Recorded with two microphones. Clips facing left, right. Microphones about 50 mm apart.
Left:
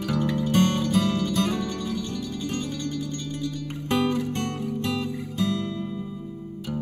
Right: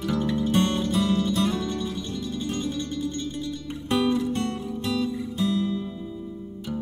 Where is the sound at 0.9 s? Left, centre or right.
Left.